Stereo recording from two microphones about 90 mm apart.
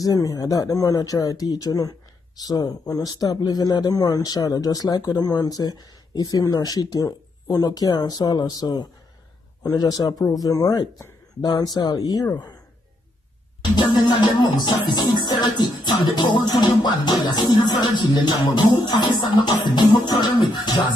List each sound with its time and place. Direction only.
0.0 s speech: 40° left (ahead or behind)
13.7 s speech: 50° left (ahead or behind)